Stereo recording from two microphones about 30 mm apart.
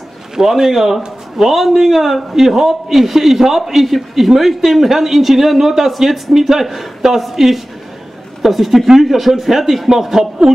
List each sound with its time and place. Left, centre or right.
0.4 s a man's voice: centre